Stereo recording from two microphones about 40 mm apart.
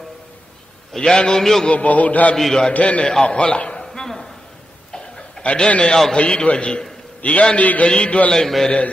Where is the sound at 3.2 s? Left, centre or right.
Left.